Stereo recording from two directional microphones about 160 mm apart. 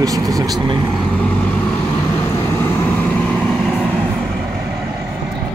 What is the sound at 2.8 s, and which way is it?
Vehicle, 10° left (ahead or behind).